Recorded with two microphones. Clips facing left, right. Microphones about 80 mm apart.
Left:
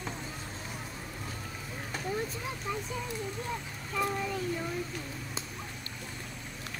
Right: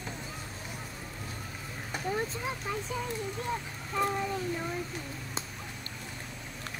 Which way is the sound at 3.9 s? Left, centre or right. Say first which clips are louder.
Right 2 dB; right.